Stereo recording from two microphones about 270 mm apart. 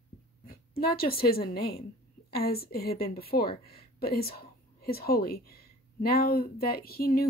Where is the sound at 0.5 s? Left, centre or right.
Left.